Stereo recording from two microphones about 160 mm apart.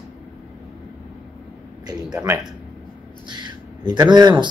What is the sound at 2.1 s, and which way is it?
Speech, 10° right (ahead or behind).